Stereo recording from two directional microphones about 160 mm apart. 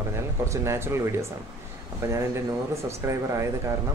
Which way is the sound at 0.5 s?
15° right (ahead or behind).